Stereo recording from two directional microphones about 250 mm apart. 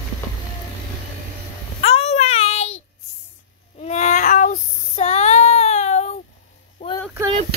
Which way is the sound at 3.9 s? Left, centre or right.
Left.